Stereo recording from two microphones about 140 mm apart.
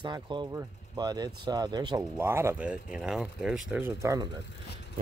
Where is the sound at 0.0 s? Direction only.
30° right (ahead or behind).